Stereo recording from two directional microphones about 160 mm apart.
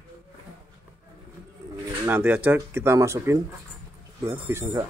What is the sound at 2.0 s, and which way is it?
Speech, 10° right (ahead or behind).